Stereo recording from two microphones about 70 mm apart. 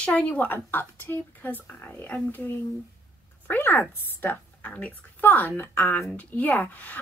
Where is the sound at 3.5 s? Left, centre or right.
Left.